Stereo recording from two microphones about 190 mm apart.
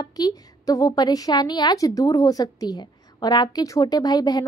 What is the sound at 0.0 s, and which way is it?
A woman's voice, 20° left (ahead or behind).